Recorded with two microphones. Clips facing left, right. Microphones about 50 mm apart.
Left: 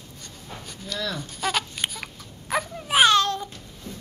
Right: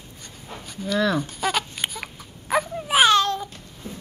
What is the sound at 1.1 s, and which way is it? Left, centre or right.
Baby cry, centre.